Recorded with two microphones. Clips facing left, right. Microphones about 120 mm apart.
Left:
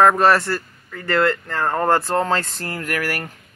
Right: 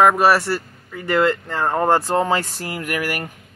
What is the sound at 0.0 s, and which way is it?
A man's voice, 5° right (ahead or behind).